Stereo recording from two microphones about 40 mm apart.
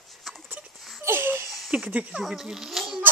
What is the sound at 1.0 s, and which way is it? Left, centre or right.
Babbling, right.